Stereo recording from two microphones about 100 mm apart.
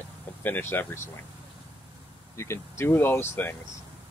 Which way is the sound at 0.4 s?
20° left (ahead or behind).